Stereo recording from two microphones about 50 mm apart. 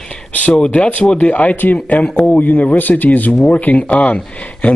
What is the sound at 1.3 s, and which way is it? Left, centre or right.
A man's voice, left.